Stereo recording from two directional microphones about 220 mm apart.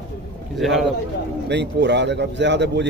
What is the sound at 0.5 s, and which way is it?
Speech, centre (ahead or behind).